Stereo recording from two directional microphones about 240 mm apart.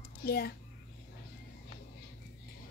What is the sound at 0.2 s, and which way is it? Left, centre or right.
Speech, left.